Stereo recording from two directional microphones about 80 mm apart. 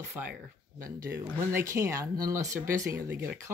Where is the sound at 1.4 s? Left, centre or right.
Right.